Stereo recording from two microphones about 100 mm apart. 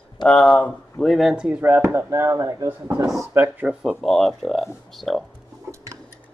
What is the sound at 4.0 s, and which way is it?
Speech, 5° left (ahead or behind).